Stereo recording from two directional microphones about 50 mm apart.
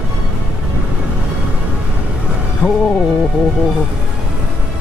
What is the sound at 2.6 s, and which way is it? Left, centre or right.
Speech, right.